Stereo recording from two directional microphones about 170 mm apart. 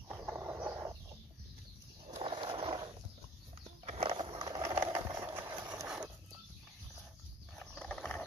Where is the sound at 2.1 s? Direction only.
30° right (ahead or behind).